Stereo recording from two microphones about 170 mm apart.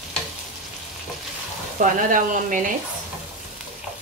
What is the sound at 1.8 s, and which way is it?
Speech, 50° right (ahead or behind).